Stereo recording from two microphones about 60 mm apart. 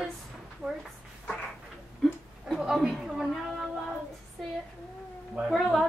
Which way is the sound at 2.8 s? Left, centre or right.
Centre.